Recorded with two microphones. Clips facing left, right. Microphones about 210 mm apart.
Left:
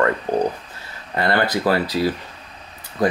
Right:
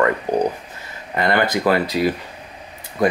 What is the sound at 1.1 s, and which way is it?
Speech, 15° right (ahead or behind).